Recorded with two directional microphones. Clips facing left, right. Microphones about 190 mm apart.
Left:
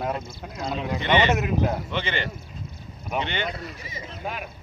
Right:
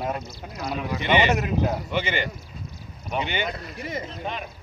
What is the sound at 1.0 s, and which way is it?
Speech, 10° right (ahead or behind).